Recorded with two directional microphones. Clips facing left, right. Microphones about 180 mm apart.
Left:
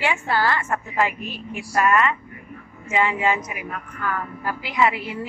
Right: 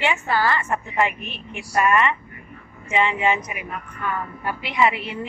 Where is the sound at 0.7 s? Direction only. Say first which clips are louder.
Right 1 dB; 15° right (ahead or behind).